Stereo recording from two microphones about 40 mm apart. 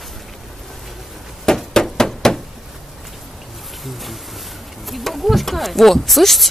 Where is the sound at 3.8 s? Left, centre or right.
Centre.